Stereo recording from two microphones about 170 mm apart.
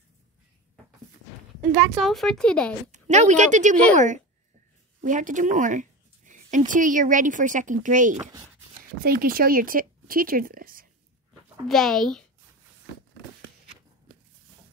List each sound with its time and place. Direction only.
1.8 s speech: centre (ahead or behind)
2.9 s a woman's voice: 45° right (ahead or behind)
8.9 s speech: 60° right (ahead or behind)
11.6 s speech: centre (ahead or behind)